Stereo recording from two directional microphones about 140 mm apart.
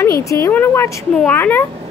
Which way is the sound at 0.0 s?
20° left (ahead or behind).